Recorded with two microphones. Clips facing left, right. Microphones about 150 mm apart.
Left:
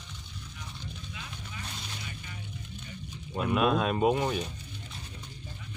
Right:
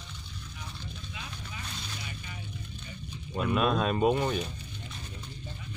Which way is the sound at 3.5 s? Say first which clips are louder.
Left 1 dB; 5° left (ahead or behind).